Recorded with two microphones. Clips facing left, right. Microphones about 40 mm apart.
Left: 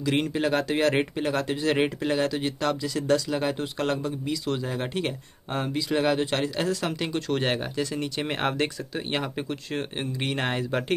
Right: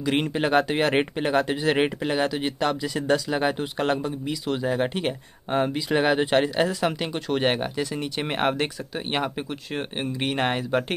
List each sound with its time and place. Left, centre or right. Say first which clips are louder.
0.0 s speech: right 1 dB; centre